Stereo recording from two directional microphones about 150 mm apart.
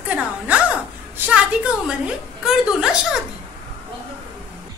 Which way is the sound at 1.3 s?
5° right (ahead or behind).